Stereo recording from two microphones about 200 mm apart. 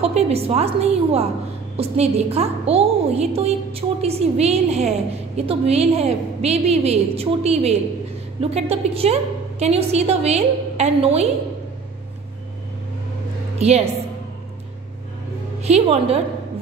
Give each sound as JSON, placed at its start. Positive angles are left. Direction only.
{"t": 0.0, "sound": "a woman's voice", "side_deg": -30}
{"t": 13.6, "sound": "a woman's voice", "side_deg": -30}
{"t": 15.6, "sound": "a woman's voice", "side_deg": -30}